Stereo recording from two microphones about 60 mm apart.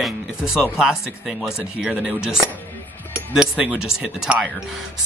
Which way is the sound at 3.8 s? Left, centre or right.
Centre.